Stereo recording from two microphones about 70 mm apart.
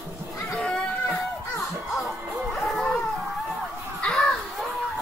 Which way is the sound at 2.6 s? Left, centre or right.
Centre.